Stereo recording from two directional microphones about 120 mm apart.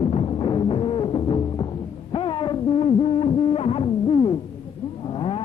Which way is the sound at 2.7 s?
55° left (ahead or behind).